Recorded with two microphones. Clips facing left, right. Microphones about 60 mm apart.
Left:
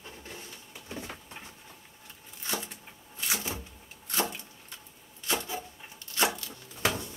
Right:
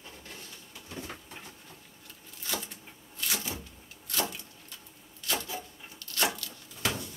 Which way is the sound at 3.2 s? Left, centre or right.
Left.